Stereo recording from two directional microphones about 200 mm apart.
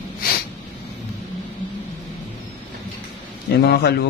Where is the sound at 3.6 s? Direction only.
55° left (ahead or behind).